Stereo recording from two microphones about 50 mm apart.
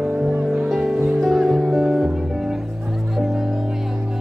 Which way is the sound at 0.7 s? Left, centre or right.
Centre.